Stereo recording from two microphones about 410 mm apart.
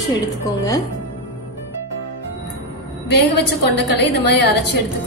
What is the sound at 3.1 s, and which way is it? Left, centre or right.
Speech, left.